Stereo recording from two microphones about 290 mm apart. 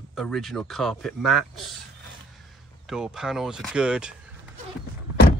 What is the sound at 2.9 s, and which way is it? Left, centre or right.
Speech, centre.